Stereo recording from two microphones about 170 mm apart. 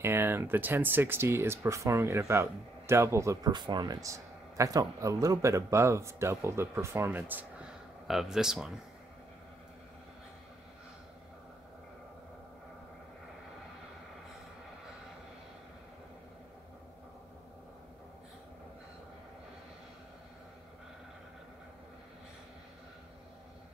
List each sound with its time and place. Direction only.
0.0 s a man's voice: 15° right (ahead or behind)